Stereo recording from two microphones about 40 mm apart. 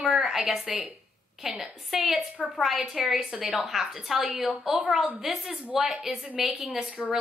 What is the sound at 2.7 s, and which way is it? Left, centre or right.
Speech, right.